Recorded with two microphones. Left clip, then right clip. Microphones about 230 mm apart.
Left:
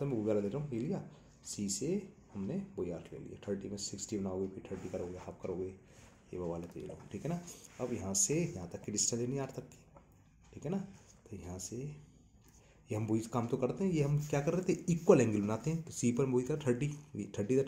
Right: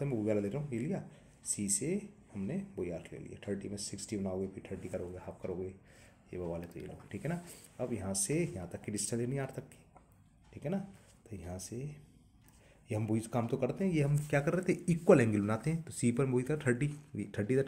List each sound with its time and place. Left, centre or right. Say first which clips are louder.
0.0 s a man's voice: even; right
1.8 s speech: even; right
2.9 s speech: right 1 dB; right
4.1 s speech: right 1 dB; right
6.3 s speech: even; right